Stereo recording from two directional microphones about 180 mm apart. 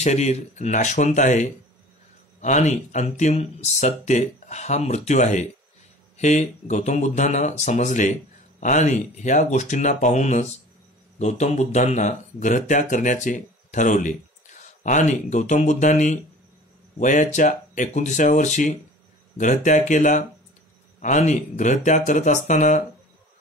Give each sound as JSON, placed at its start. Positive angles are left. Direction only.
{"t": 0.0, "sound": "speech", "side_deg": 40}